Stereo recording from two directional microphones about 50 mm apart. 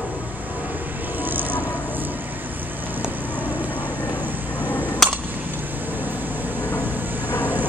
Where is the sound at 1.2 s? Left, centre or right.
Right.